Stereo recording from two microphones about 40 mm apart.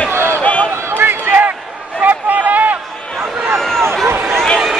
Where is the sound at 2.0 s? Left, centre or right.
Right.